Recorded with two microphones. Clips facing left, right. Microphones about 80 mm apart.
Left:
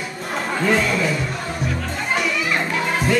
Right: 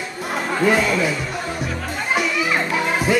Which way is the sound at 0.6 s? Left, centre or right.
Centre.